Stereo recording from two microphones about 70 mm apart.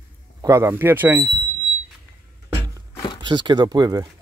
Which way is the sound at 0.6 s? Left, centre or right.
Right.